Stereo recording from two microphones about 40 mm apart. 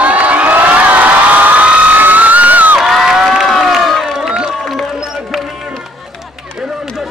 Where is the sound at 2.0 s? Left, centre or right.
Right.